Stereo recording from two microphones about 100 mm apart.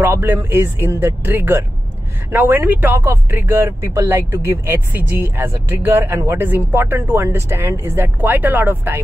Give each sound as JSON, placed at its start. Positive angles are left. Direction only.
{"t": 0.0, "sound": "speech", "side_deg": -20}